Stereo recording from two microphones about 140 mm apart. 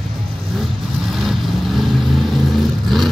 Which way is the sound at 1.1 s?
Centre (ahead or behind).